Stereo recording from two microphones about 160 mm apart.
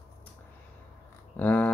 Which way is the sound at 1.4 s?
10° left (ahead or behind).